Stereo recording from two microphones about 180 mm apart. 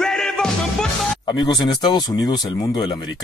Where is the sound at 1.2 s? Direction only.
25° left (ahead or behind).